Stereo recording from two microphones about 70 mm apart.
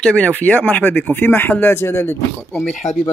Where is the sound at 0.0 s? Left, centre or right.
Centre.